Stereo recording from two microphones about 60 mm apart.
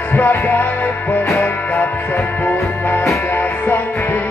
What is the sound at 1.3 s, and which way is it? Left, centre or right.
Music, left.